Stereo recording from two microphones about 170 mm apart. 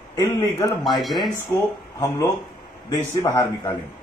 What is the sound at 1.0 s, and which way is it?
Speech, centre (ahead or behind).